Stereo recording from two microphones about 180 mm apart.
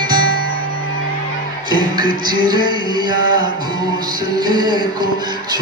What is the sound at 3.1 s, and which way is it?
Music, 90° left.